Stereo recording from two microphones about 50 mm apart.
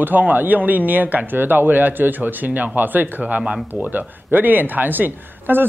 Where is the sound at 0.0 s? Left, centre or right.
Right.